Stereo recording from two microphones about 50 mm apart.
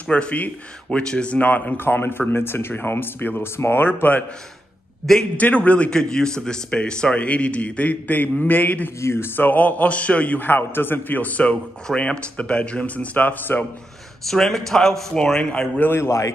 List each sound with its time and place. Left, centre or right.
0.1 s a man's voice: left
1.4 s a man's voice: left
1.8 s speech: left
5.4 s a man's voice: left
5.9 s a man's voice: centre; by 8.9 s left
9.0 s a man's voice: left
14.3 s a man's voice: centre
15.8 s speech: left